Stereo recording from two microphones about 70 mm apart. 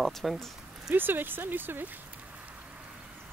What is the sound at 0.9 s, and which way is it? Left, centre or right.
Speech, right.